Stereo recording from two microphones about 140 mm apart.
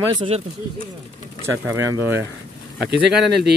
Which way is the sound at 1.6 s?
20° right (ahead or behind).